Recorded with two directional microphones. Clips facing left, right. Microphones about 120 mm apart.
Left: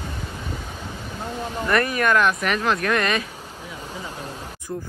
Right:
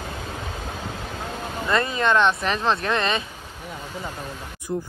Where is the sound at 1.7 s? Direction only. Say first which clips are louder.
Left 1 dB; 20° right (ahead or behind).